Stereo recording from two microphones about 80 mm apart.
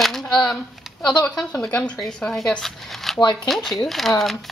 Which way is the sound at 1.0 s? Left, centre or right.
Centre.